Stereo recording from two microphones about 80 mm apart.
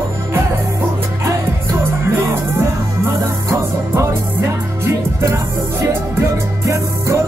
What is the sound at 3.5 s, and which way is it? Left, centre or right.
Music, right.